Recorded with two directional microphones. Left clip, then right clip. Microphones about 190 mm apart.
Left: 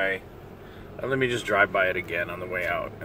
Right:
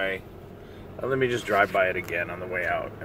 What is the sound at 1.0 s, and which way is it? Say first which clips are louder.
Speech: even; centre (ahead or behind).